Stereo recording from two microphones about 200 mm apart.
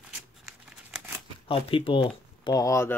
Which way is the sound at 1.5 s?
25° left (ahead or behind).